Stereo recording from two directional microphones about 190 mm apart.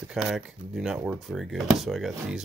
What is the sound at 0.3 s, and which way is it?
Speech, centre (ahead or behind).